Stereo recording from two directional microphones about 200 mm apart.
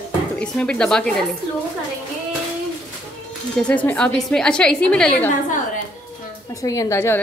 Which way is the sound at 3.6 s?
5° left (ahead or behind).